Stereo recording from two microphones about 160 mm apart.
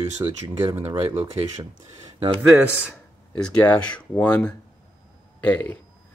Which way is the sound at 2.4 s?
10° right (ahead or behind).